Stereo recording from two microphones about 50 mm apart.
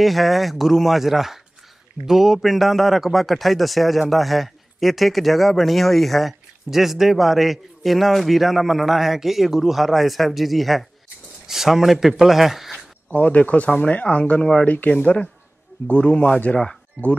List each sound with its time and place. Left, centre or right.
0.0 s a man's voice: centre
13.1 s speech: left